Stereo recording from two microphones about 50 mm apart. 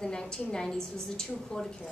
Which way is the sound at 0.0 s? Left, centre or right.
Centre.